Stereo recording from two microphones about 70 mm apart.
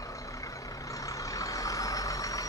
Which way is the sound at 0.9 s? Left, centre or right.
Left.